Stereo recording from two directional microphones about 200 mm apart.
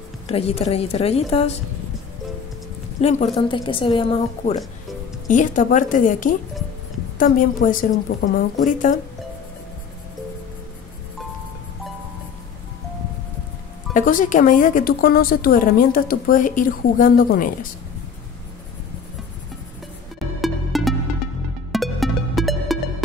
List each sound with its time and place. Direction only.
0.3 s a woman's voice: 30° left (ahead or behind)
3.0 s speech: 35° left (ahead or behind)
3.3 s a woman's voice: 25° left (ahead or behind)
5.3 s a woman's voice: 40° left (ahead or behind)
13.9 s speech: 40° left (ahead or behind)
20.3 s music: centre (ahead or behind)